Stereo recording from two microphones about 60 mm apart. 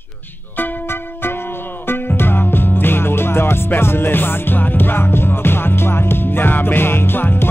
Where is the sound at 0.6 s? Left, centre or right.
Left.